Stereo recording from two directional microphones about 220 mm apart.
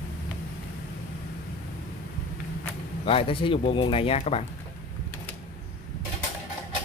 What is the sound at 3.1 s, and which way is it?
Speech, 25° left (ahead or behind).